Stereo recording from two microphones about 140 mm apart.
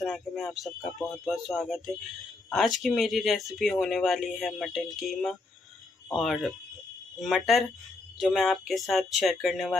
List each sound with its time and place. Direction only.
0.0 s speech: centre (ahead or behind)